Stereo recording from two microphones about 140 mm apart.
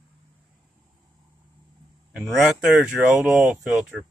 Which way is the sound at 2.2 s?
5° right (ahead or behind).